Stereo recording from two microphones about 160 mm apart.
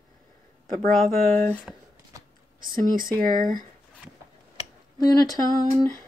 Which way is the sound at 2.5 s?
60° right (ahead or behind).